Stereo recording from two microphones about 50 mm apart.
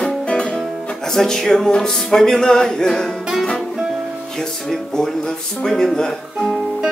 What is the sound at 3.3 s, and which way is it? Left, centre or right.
Saxophone, centre.